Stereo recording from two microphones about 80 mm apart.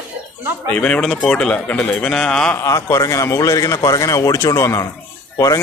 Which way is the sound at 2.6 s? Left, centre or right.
Left.